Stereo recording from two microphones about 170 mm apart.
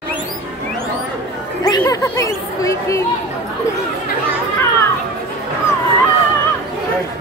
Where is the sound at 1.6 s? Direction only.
20° left (ahead or behind).